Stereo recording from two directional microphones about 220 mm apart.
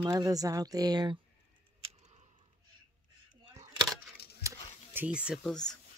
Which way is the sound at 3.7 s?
20° right (ahead or behind).